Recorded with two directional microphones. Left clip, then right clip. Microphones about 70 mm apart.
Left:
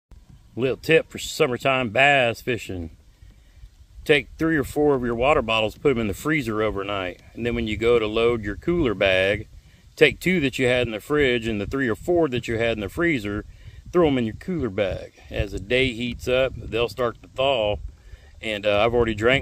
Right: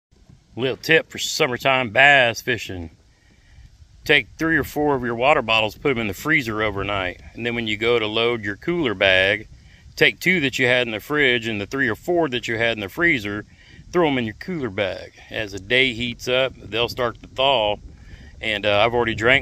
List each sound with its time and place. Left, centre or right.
0.6 s speech: left
4.0 s speech: left